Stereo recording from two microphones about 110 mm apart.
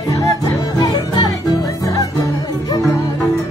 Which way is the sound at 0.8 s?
35° left (ahead or behind).